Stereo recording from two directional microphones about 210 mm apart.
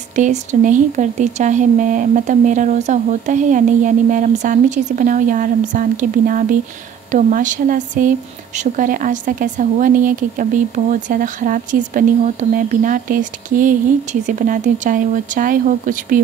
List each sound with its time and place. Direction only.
0.1 s speech: 35° right (ahead or behind)